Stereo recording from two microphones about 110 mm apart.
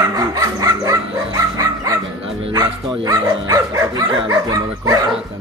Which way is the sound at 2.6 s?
30° right (ahead or behind).